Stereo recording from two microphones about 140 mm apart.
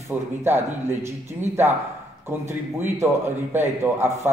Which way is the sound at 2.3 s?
15° right (ahead or behind).